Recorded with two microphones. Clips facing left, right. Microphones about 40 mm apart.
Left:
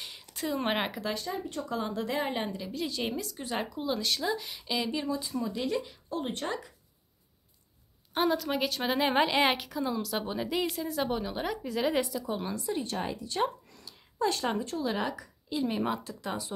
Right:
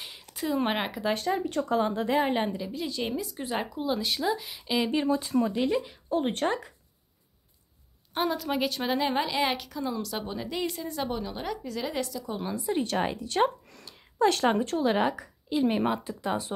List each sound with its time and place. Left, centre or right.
0.0 s a sound: centre
1.1 s speech: right
1.9 s speech: right
2.5 s speech: centre
4.7 s speech: right
5.2 s speech: right
5.5 s speech: right
6.2 s speech: right
8.1 s speech: centre
9.0 s a woman's voice: centre
12.7 s speech: right
13.0 s speech: right
13.8 s a sound: right
14.9 s speech: right